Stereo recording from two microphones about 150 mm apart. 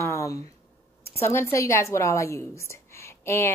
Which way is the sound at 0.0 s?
20° left (ahead or behind).